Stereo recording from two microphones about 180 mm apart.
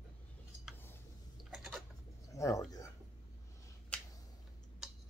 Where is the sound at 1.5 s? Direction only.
Centre (ahead or behind).